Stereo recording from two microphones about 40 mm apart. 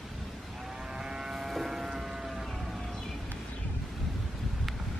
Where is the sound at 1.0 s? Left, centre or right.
Centre.